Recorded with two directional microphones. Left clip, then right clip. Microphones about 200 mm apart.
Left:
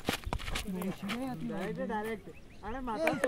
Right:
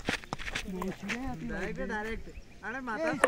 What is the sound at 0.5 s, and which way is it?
Speech, 60° left (ahead or behind).